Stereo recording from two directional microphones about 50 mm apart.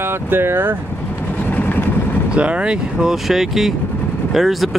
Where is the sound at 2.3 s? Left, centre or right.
Right.